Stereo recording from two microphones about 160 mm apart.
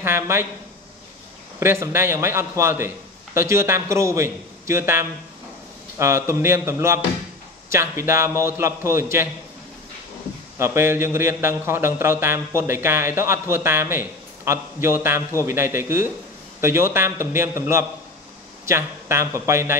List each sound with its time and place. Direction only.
0.0 s a man's voice: 15° right (ahead or behind)
1.6 s a man's voice: 15° right (ahead or behind)
10.6 s a man's voice: 15° right (ahead or behind)